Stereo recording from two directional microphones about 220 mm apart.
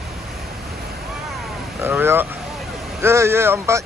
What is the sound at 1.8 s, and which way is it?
Speech, 10° right (ahead or behind).